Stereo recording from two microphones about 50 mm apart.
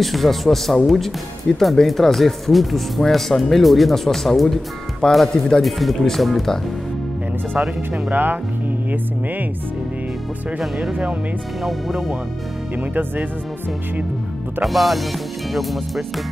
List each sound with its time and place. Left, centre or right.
0.0 s speech: centre
8.1 s speech: right
11.6 s speech: centre
14.6 s speech: centre